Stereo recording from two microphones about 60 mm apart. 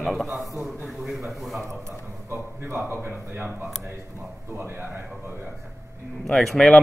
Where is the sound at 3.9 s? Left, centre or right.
Right.